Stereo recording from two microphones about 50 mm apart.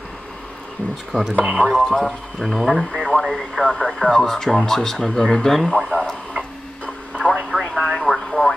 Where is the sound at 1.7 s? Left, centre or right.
Centre.